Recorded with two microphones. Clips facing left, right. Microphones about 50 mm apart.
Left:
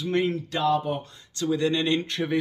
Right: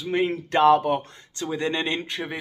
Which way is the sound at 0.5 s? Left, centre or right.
Right.